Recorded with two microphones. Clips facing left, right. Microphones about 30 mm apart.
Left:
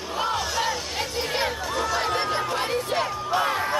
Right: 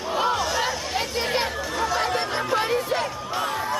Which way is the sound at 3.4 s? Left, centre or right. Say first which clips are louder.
Left 2 dB; centre.